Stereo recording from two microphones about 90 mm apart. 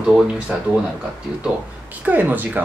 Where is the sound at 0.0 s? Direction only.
10° right (ahead or behind).